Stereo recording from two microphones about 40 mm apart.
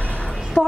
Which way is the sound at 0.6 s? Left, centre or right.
Centre.